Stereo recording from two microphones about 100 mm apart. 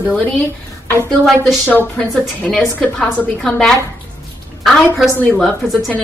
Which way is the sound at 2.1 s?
5° left (ahead or behind).